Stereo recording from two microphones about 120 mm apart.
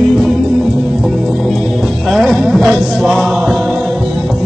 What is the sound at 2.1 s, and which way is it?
Music, centre (ahead or behind).